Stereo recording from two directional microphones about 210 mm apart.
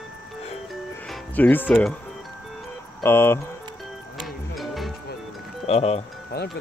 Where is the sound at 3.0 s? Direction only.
10° left (ahead or behind).